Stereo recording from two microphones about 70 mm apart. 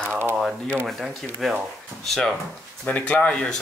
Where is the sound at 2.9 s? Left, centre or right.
Centre.